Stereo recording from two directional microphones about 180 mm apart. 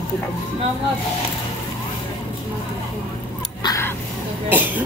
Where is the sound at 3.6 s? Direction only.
15° left (ahead or behind).